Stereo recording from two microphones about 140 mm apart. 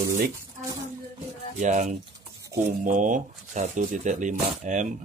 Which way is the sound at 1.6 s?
60° right (ahead or behind).